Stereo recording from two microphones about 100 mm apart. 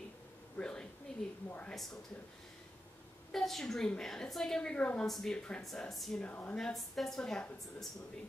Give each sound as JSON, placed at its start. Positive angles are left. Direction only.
{"t": 0.6, "sound": "a sound", "side_deg": 10}
{"t": 1.5, "sound": "speech", "side_deg": 15}
{"t": 3.3, "sound": "a woman's voice", "side_deg": 5}
{"t": 6.2, "sound": "a woman's voice", "side_deg": 15}